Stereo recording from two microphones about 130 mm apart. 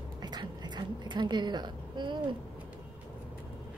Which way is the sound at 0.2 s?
35° right (ahead or behind).